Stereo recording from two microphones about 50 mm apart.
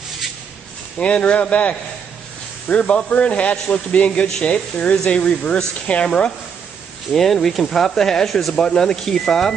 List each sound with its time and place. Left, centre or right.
0.9 s speech: left
7.1 s speech: centre